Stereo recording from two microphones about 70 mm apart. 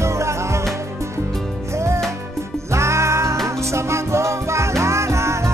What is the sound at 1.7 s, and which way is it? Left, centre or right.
Music, right.